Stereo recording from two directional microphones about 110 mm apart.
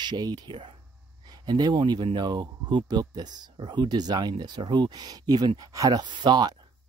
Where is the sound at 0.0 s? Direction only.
40° right (ahead or behind).